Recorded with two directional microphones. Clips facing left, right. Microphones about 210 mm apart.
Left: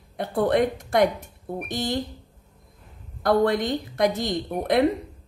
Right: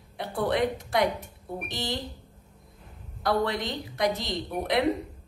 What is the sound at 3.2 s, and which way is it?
A woman's voice, 50° left (ahead or behind).